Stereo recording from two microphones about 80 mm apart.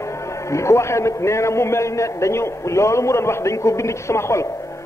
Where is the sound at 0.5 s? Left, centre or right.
Left.